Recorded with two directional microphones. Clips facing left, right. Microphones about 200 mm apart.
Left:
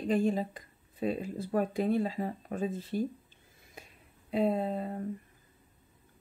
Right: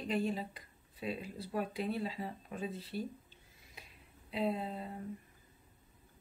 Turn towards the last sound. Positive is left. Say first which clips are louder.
# left 8 dB
turn(degrees=45)  # may be behind; listen again after turning